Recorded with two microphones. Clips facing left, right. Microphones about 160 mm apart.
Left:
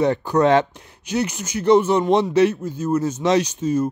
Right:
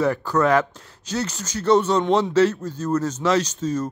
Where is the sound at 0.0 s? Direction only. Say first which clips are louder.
Left 3 dB; 20° left (ahead or behind).